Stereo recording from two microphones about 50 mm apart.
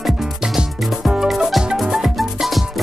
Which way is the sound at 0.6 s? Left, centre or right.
Centre.